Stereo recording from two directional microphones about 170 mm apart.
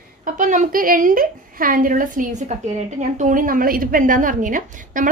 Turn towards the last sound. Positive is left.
turn(degrees=-50)  # may be behind; listen again after turning